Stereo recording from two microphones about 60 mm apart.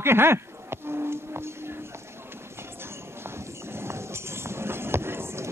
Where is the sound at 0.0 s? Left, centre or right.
Right.